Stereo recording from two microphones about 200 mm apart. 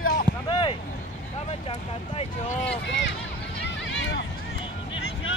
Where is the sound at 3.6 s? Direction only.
65° left (ahead or behind).